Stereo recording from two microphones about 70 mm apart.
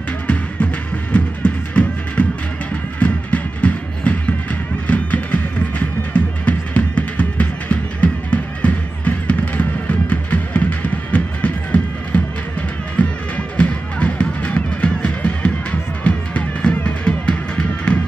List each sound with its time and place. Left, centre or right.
1.1 s music: centre